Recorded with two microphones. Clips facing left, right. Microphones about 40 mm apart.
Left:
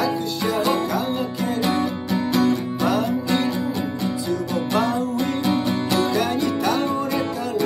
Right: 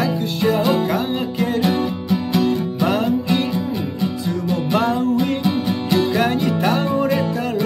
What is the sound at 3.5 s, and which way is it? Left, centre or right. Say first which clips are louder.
Music: right 1 dB; right.